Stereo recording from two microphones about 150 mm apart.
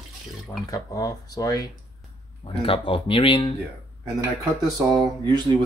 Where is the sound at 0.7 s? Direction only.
25° left (ahead or behind).